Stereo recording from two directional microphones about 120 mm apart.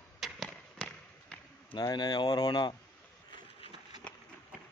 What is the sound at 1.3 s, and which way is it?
Basketball bounce, 10° left (ahead or behind).